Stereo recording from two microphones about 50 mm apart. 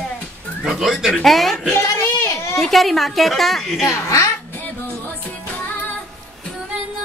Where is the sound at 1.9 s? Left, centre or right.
Left.